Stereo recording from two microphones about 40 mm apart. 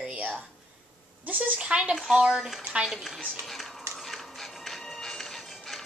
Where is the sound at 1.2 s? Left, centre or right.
Right.